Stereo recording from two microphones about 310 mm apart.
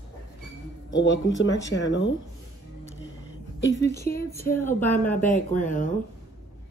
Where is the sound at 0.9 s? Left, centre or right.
Left.